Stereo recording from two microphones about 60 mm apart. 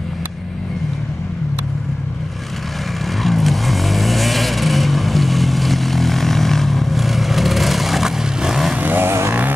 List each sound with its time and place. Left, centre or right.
3.2 s vehicle: centre
8.7 s vehicle: right